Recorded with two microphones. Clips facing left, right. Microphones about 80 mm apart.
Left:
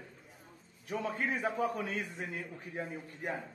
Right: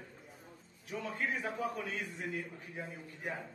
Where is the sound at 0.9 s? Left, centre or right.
Left.